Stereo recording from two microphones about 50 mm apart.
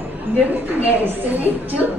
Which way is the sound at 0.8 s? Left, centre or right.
Right.